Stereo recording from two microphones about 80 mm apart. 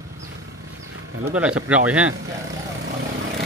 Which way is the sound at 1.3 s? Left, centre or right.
Centre.